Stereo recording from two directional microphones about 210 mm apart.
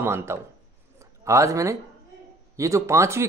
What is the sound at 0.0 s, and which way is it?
Speech, 10° right (ahead or behind).